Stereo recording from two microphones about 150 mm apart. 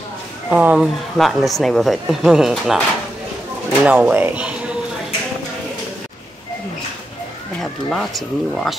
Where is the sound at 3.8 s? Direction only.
10° right (ahead or behind).